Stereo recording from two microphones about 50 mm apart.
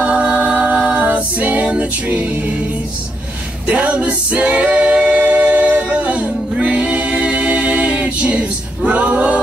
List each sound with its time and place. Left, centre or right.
0.0 s a capella: right
1.7 s music: right
3.6 s a capella: right